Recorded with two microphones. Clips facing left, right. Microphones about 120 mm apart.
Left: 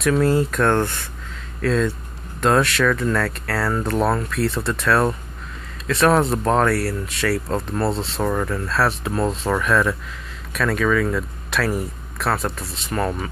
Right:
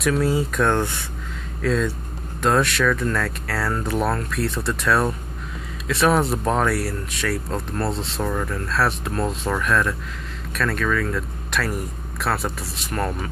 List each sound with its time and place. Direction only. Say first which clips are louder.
0.0 s speech: left 3 dB; 5° right (ahead or behind)